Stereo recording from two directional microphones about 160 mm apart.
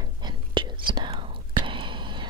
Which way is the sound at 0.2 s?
30° right (ahead or behind).